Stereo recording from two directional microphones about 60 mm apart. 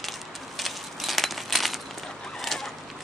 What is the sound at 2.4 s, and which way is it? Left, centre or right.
Chicken, centre.